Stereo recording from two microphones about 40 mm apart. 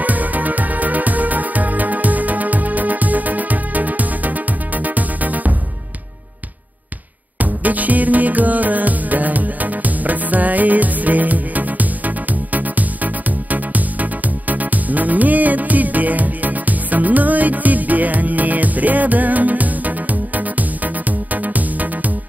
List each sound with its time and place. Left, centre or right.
0.0 s music: right
7.3 s music: right